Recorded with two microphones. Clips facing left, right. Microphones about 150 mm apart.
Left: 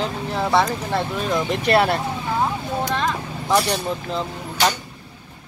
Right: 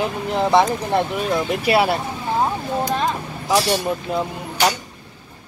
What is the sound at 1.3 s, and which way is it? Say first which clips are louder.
Speech: left 2 dB; 5° right (ahead or behind).